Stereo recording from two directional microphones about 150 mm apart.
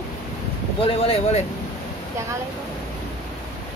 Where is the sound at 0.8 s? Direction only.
40° left (ahead or behind).